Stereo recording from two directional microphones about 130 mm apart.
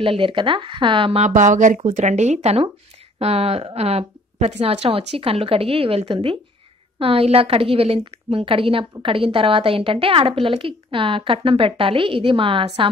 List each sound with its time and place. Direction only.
0.0 s speech: 40° right (ahead or behind)
1.2 s a woman's voice: 70° right (ahead or behind); by 12.9 s 40° right (ahead or behind)